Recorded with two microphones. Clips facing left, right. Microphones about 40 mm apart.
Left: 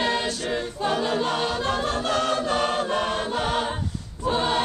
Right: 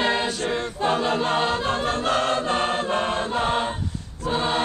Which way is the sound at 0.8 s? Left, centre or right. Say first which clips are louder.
Right 2 dB; right.